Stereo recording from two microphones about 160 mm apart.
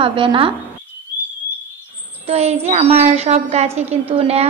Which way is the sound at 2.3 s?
40° right (ahead or behind).